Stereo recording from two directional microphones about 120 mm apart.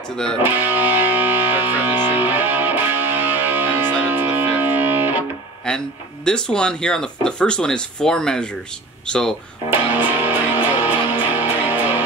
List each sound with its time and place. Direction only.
0.4 s music: 15° right (ahead or behind)
5.7 s a sound: 5° left (ahead or behind)
6.2 s speech: 5° left (ahead or behind)
9.7 s music: 15° right (ahead or behind)